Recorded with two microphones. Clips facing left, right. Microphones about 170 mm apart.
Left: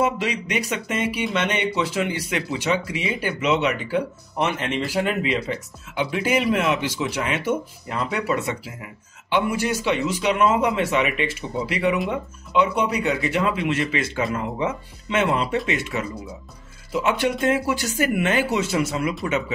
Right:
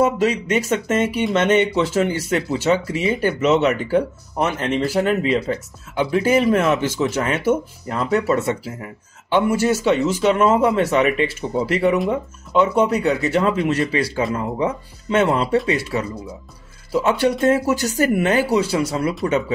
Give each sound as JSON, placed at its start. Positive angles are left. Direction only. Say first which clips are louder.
{"t": 0.0, "sound": "speech", "louder": "right 5 dB", "side_deg": -40}